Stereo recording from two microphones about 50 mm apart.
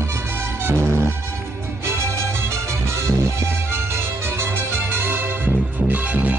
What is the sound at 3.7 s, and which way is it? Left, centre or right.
Music, right.